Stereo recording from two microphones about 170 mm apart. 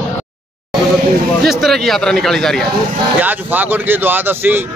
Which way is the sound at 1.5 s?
Centre (ahead or behind).